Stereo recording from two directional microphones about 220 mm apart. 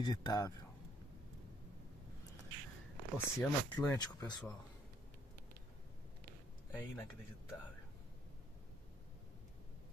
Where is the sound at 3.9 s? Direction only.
15° left (ahead or behind).